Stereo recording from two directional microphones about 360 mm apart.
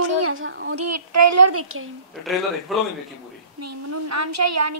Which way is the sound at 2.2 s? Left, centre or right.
Centre.